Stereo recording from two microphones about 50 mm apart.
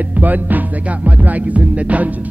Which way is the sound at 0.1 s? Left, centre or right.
Right.